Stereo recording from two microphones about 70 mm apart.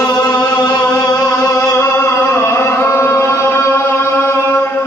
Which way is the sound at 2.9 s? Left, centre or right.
Left.